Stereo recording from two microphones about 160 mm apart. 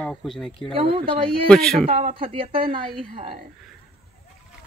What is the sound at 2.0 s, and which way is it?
Speech, 35° right (ahead or behind).